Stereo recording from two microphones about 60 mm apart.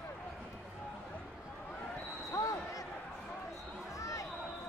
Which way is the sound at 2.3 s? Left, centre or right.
Left.